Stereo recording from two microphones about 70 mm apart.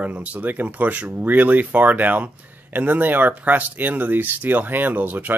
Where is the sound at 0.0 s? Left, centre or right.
Right.